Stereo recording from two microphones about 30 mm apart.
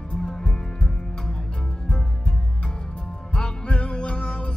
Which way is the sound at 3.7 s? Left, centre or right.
Left.